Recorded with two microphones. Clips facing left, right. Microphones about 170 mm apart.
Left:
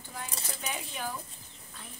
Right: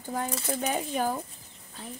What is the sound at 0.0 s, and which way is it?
Speech, 45° right (ahead or behind).